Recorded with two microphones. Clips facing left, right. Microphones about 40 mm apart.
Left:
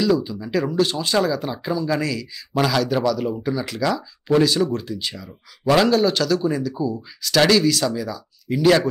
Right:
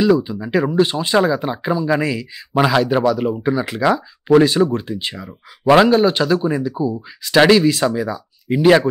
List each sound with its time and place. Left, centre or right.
0.0 s speech: right